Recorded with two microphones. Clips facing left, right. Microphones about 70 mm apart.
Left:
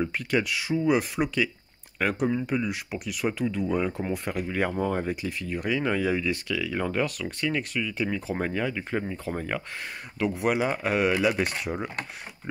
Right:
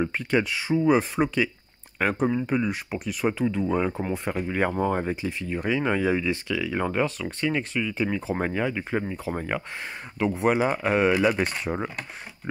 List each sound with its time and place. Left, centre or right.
0.0 s speech: right
10.1 s speech: right